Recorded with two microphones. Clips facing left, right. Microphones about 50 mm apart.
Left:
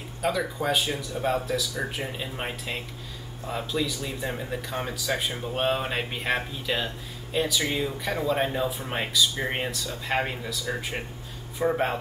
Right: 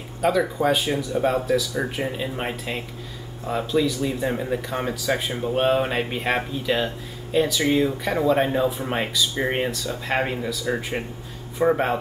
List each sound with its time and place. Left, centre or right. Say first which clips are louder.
0.2 s speech: right 6 dB; centre
11.6 s speech: right 6 dB; right